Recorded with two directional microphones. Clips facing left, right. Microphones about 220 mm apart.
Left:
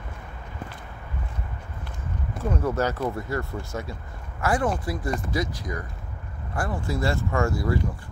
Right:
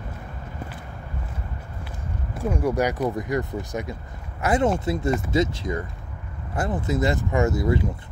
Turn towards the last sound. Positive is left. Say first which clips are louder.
# right 3 dB
turn(degrees=-20)  # may be behind; listen again after turning